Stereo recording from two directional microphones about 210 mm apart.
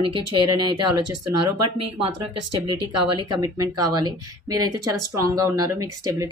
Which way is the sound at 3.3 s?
15° right (ahead or behind).